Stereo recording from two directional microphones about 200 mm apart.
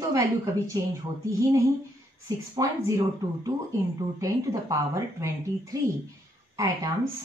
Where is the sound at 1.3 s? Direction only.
15° right (ahead or behind).